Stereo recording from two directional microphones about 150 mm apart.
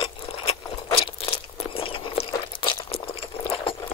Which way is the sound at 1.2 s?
35° left (ahead or behind).